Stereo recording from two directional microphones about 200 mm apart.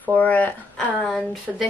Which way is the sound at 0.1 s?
10° left (ahead or behind).